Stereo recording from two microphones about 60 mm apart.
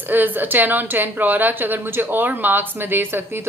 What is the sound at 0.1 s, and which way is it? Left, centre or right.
A woman's voice, right.